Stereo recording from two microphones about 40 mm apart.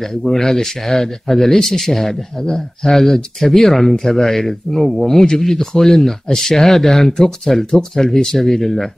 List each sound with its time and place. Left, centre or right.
0.2 s speech: centre